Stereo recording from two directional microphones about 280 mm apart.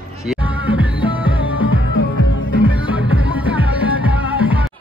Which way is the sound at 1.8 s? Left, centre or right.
Left.